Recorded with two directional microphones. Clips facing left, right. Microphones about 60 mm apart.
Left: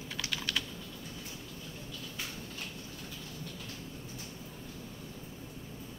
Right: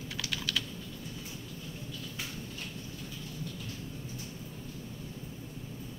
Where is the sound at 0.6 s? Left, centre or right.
Left.